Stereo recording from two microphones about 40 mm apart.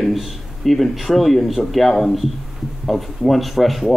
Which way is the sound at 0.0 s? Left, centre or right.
Centre.